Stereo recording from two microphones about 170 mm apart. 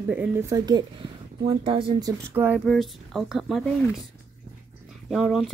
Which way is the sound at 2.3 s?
15° right (ahead or behind).